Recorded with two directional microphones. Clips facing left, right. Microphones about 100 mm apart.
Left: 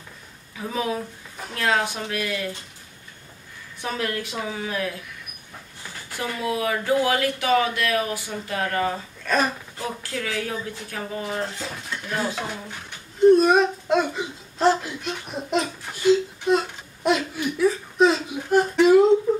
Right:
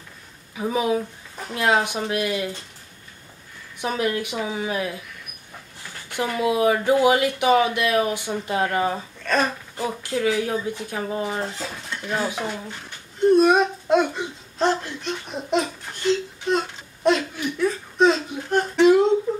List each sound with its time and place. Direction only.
0.6 s speech: 15° right (ahead or behind)
3.8 s speech: 15° right (ahead or behind)
6.1 s speech: 20° right (ahead or behind)
9.2 s a sound: 5° left (ahead or behind)
9.8 s speech: 20° right (ahead or behind)
11.9 s stir: centre (ahead or behind)
13.2 s whimper: centre (ahead or behind)